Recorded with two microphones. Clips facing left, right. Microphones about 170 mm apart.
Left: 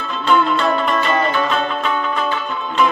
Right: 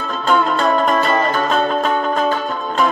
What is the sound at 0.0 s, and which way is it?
Music, 40° right (ahead or behind).